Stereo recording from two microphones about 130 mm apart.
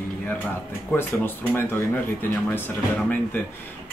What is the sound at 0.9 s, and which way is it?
Speech, 15° left (ahead or behind).